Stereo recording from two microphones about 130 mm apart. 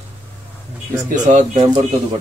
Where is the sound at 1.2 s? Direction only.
60° right (ahead or behind).